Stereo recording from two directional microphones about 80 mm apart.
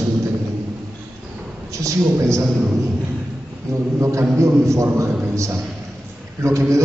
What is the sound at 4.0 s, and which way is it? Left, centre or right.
A man's voice, right.